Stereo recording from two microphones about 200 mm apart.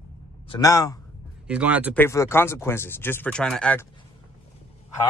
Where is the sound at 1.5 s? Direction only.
5° right (ahead or behind).